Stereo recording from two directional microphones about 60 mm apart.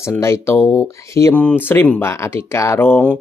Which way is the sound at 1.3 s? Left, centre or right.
Left.